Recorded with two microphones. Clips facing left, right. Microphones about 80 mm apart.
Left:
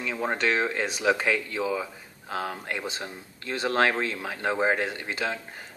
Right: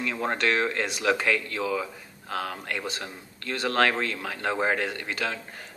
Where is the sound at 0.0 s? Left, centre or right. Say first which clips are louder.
Even; centre.